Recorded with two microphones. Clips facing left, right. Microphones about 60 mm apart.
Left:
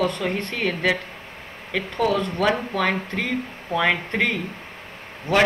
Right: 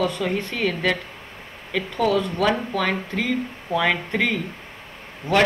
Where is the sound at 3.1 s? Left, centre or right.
Centre.